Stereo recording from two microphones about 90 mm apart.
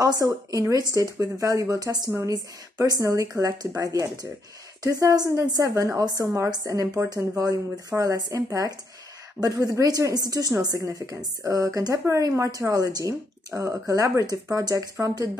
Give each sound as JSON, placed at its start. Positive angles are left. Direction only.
{"t": 0.5, "sound": "speech", "side_deg": -40}